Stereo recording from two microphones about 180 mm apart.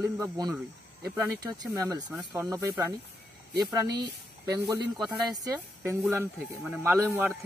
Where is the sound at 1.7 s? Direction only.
20° right (ahead or behind).